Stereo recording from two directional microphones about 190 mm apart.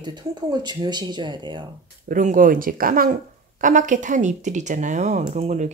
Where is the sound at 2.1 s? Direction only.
45° right (ahead or behind).